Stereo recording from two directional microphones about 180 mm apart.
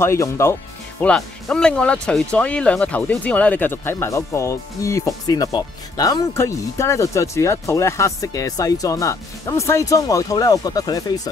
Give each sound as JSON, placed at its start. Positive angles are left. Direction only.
{"t": 0.0, "sound": "speech", "side_deg": 15}
{"t": 1.0, "sound": "speech", "side_deg": 5}